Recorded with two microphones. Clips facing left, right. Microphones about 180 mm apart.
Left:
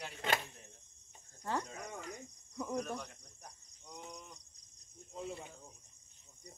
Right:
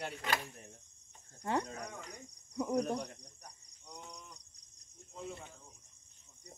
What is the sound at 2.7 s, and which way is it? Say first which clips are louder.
Speech: right 6 dB; 35° right (ahead or behind).